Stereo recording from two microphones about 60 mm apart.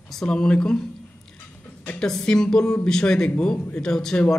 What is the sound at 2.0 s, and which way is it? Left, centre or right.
A man's voice, centre.